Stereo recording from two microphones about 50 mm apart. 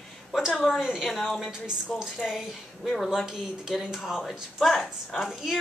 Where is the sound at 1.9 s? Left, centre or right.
Centre.